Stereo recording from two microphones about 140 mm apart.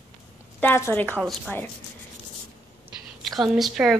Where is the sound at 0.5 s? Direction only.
15° left (ahead or behind).